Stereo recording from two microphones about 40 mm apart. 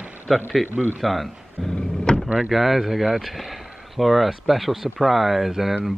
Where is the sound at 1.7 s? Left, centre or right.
Left.